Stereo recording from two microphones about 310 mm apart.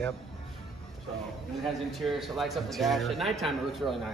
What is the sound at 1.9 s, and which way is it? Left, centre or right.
A man's voice, centre.